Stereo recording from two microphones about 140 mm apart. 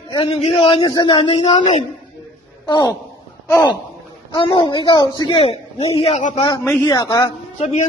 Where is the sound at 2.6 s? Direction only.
25° left (ahead or behind).